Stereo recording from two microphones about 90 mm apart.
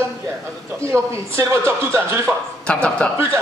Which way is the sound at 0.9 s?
25° right (ahead or behind).